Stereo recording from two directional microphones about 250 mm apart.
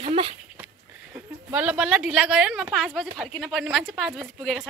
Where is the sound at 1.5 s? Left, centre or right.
Centre.